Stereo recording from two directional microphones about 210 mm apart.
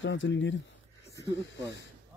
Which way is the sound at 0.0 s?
60° left (ahead or behind).